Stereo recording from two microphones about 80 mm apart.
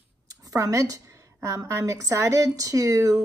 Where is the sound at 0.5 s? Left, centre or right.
Right.